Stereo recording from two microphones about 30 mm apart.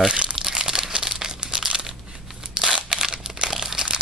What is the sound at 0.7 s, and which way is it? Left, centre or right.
Crumpling, centre.